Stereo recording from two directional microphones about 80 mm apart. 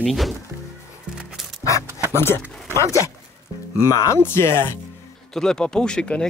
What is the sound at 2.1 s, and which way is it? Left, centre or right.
Speech, left.